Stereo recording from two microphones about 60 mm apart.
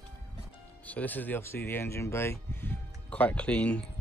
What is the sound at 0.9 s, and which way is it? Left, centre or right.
Speech, left.